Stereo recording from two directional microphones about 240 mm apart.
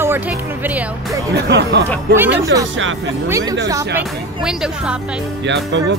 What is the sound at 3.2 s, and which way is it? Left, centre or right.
Speech, centre.